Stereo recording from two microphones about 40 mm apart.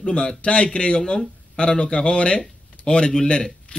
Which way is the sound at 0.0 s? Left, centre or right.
Centre.